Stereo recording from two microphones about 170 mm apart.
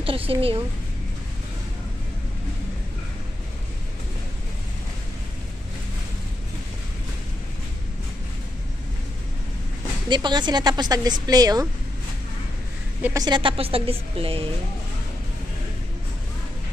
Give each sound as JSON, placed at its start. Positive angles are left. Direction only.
{"t": 0.0, "sound": "a woman's voice", "side_deg": -35}
{"t": 10.0, "sound": "speech", "side_deg": -25}
{"t": 13.0, "sound": "a woman's voice", "side_deg": -20}